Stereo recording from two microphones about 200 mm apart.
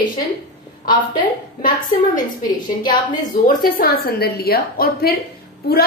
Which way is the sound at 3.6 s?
50° left (ahead or behind).